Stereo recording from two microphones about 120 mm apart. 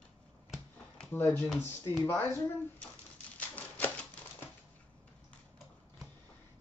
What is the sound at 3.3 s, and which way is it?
Typewriter, 15° left (ahead or behind).